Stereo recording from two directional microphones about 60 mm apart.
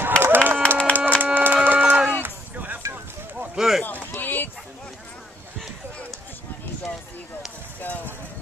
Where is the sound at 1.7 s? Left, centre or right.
Right.